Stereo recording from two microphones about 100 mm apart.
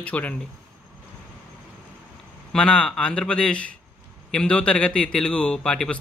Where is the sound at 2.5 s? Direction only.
10° left (ahead or behind).